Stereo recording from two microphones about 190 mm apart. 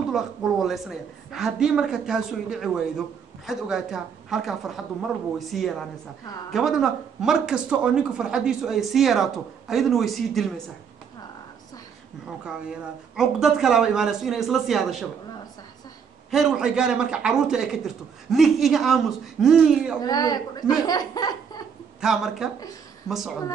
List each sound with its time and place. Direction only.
0.1 s speech: centre (ahead or behind)
12.4 s speech: 5° right (ahead or behind)
16.3 s speech: 5° right (ahead or behind)
20.0 s speech: 20° left (ahead or behind)
22.0 s speech: centre (ahead or behind)